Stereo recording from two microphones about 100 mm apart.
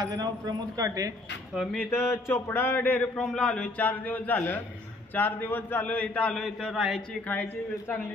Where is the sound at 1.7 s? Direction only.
30° left (ahead or behind); by 6.4 s 10° left (ahead or behind).